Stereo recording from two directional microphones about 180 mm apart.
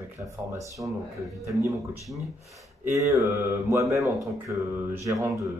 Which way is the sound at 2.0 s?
Centre (ahead or behind).